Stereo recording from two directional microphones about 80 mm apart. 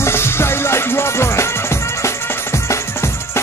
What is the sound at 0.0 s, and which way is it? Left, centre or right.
Music, left.